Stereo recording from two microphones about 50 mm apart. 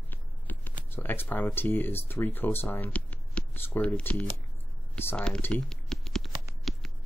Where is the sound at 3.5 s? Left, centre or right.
Left.